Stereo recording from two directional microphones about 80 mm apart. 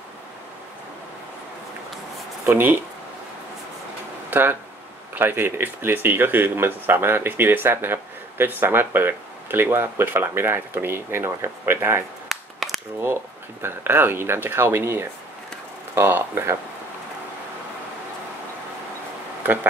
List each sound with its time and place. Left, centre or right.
2.4 s speech: right
4.3 s speech: right
12.3 s a sound: centre
13.0 s speech: right
19.4 s speech: right